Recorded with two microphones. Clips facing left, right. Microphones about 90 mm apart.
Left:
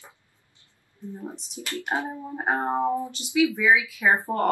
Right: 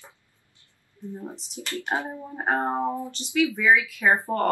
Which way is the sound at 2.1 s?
10° left (ahead or behind).